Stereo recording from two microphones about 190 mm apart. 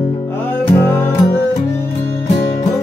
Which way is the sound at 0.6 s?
10° left (ahead or behind).